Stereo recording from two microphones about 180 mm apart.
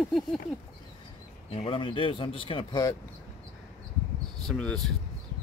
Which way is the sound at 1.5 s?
30° left (ahead or behind).